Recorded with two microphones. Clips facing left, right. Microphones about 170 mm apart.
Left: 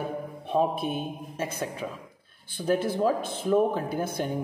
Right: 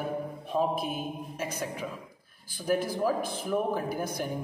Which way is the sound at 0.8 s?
30° left (ahead or behind).